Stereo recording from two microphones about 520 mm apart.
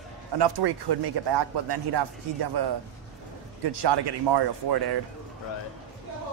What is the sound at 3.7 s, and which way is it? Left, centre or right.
A man's voice, right.